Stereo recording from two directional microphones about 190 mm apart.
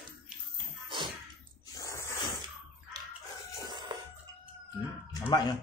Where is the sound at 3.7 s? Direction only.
25° right (ahead or behind).